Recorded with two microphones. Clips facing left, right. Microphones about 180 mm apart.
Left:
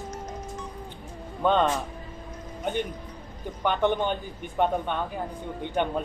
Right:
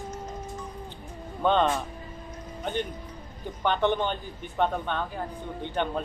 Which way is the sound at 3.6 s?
10° left (ahead or behind).